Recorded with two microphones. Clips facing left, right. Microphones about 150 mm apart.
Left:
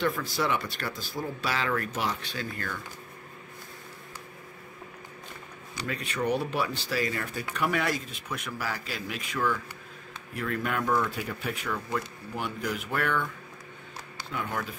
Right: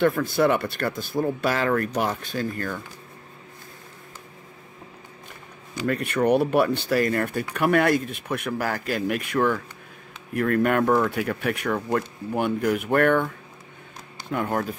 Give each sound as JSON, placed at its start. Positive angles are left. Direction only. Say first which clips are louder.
{"t": 0.0, "sound": "speech", "louder": "right 8 dB", "side_deg": -55}
{"t": 5.9, "sound": "speech", "louder": "right 8 dB", "side_deg": -55}
{"t": 14.3, "sound": "speech", "louder": "right 8 dB", "side_deg": -45}